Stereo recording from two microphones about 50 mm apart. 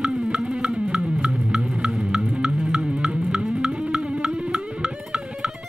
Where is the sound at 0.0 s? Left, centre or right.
Centre.